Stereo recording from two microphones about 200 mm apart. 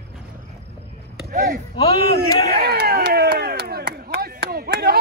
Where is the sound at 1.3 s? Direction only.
40° right (ahead or behind).